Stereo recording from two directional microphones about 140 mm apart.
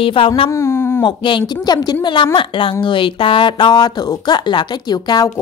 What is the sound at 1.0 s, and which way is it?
A woman's voice, 35° left (ahead or behind).